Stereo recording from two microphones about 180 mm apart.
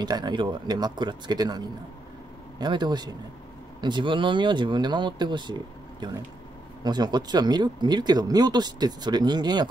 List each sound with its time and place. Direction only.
0.0 s speech: 25° right (ahead or behind)
2.6 s speech: 25° right (ahead or behind)